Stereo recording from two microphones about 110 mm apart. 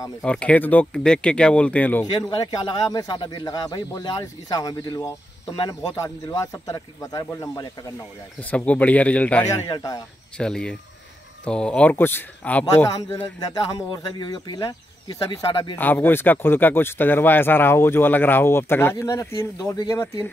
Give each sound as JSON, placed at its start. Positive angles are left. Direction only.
{"t": 0.2, "sound": "speech", "side_deg": 10}
{"t": 2.1, "sound": "speech", "side_deg": 35}
{"t": 8.4, "sound": "speech", "side_deg": 15}
{"t": 9.4, "sound": "speech", "side_deg": 25}
{"t": 10.3, "sound": "speech", "side_deg": 5}
{"t": 12.7, "sound": "speech", "side_deg": 25}
{"t": 13.4, "sound": "speech", "side_deg": 35}
{"t": 15.4, "sound": "speech", "side_deg": 50}
{"t": 15.8, "sound": "speech", "side_deg": 20}